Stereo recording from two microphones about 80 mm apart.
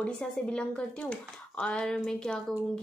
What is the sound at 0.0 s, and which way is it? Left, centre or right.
A woman's voice, centre.